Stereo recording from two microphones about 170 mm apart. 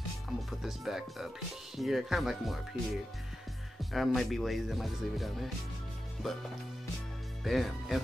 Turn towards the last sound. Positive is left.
turn(degrees=0)  # may be behind; listen again after turning